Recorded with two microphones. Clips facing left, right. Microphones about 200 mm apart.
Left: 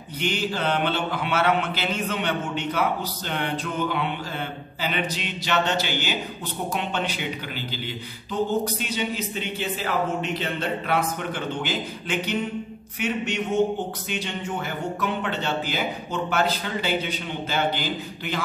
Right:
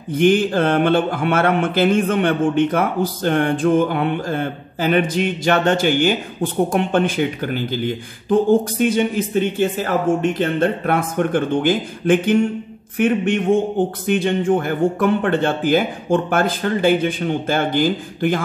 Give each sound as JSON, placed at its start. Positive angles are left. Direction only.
{"t": 0.1, "sound": "speech", "side_deg": -50}